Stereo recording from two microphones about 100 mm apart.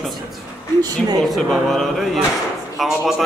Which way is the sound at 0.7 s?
40° right (ahead or behind).